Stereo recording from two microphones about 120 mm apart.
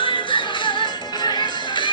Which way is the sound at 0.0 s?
45° left (ahead or behind).